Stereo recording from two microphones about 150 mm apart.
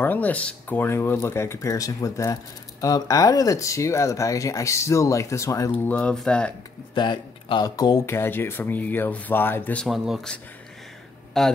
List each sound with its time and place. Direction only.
0.0 s speech: 10° left (ahead or behind)
7.0 s speech: 30° left (ahead or behind); by 9.8 s 10° left (ahead or behind)
9.8 s speech: 5° right (ahead or behind)
11.4 s speech: centre (ahead or behind)